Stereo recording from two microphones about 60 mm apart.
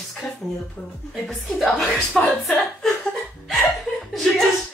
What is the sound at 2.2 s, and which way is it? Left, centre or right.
Speech, left.